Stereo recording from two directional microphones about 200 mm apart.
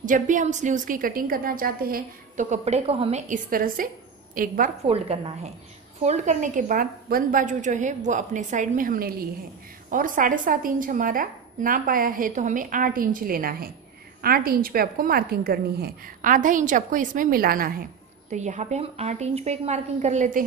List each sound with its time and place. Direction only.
0.0 s a woman's voice: 40° right (ahead or behind)
4.8 s a woman's voice: 30° right (ahead or behind); by 17.7 s 45° right (ahead or behind)
18.3 s a woman's voice: 35° right (ahead or behind)